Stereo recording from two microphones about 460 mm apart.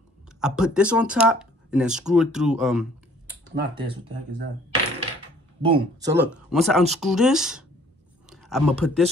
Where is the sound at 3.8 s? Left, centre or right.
Right.